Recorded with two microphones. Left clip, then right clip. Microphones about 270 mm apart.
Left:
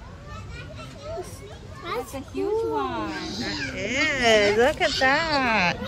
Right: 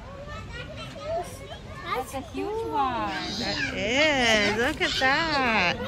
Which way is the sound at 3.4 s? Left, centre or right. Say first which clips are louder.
Right 2 dB; centre.